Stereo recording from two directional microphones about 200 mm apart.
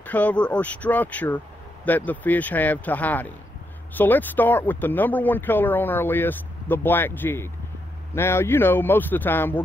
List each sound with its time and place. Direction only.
0.0 s speech: 10° left (ahead or behind)